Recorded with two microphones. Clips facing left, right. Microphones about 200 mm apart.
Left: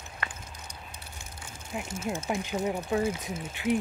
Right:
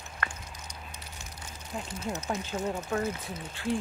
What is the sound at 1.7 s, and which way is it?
Speech, 10° left (ahead or behind).